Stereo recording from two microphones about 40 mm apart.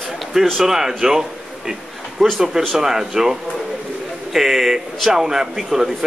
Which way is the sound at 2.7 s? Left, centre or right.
Centre.